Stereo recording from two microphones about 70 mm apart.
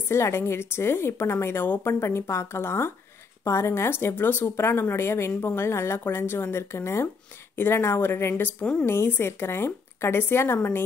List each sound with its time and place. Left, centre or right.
0.1 s a woman's voice: left